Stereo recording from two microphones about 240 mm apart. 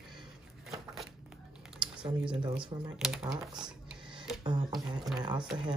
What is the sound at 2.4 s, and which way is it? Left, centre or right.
Speech, right.